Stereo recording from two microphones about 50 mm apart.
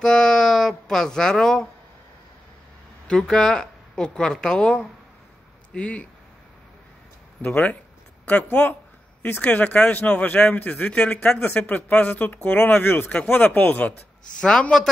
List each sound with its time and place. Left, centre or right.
0.0 s speech: centre
3.1 s a man's voice: centre
8.3 s a man's voice: left
10.7 s a man's voice: left
11.4 s speech: left
13.1 s a man's voice: left
14.4 s speech: centre